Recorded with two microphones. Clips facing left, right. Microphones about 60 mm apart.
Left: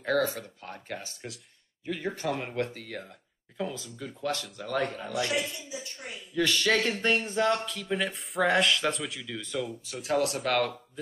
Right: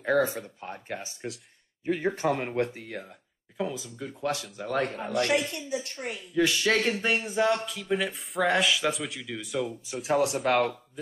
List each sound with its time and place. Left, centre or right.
0.0 s a man's voice: centre
1.9 s a man's voice: right
5.1 s speech: right
6.3 s a man's voice: centre
10.1 s speech: right